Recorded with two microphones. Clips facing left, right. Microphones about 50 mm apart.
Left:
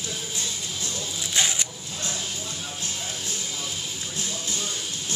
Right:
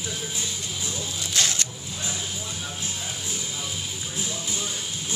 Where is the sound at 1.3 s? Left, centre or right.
Centre.